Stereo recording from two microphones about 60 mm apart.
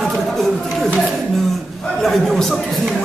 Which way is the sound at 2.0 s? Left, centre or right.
Centre.